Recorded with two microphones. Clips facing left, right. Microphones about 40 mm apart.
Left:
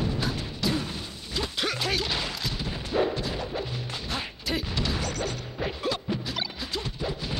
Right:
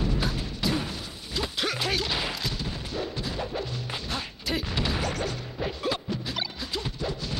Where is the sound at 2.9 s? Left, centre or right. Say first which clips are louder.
Left 8 dB; left.